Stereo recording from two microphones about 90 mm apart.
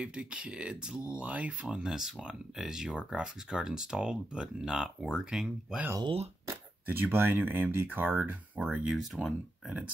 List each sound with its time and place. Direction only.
0.0 s speech: 10° right (ahead or behind)
6.4 s speech: 25° right (ahead or behind)
8.9 s speech: centre (ahead or behind)